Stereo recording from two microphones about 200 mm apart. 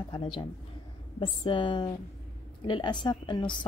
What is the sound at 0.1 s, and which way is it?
A woman's voice, 25° left (ahead or behind).